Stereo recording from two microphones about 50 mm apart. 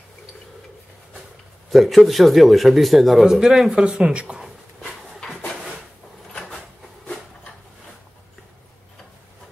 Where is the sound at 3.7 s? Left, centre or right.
Centre.